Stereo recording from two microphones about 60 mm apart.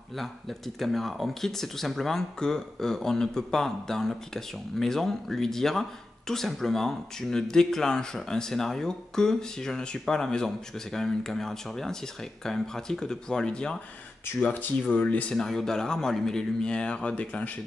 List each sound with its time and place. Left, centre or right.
0.2 s speech: centre
14.4 s speech: left
15.3 s speech: centre